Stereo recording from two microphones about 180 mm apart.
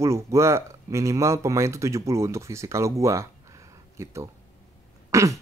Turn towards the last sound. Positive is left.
turn(degrees=-15)  # may be behind; listen again after turning